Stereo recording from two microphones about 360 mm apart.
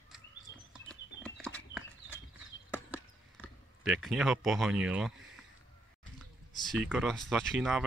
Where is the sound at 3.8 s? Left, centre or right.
Centre.